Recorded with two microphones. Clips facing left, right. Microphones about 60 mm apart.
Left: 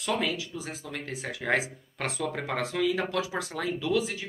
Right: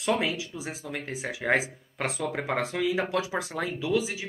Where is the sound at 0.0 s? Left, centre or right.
Centre.